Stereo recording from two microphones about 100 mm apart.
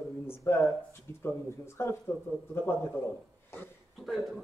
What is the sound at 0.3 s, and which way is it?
Speech, 25° left (ahead or behind).